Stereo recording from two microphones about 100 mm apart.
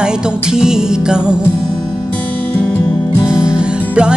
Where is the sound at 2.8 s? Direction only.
45° left (ahead or behind).